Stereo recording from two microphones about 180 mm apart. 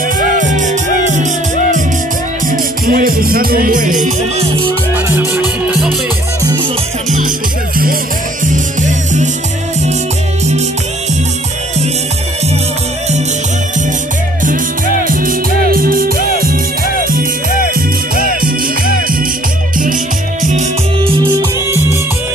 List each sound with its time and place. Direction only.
0.4 s music: 45° right (ahead or behind)
4.9 s music: 15° right (ahead or behind)
6.4 s music: 25° right (ahead or behind)
7.1 s music: 45° right (ahead or behind)
8.5 s music: 45° right (ahead or behind)
15.0 s music: 50° right (ahead or behind)
17.7 s music: 55° right (ahead or behind)
21.0 s music: 20° right (ahead or behind)